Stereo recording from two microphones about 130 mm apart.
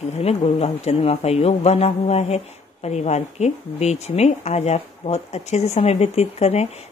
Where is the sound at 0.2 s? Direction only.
55° left (ahead or behind).